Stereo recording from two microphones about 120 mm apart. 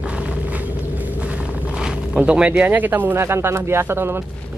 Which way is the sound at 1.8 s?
10° right (ahead or behind).